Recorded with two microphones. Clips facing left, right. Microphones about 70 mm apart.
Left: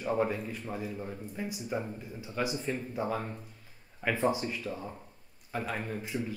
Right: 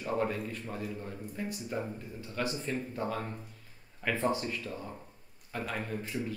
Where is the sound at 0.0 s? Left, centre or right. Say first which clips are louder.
Left 2 dB; centre.